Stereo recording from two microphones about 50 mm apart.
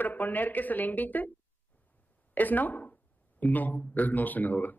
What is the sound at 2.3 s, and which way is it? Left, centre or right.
Speech, left.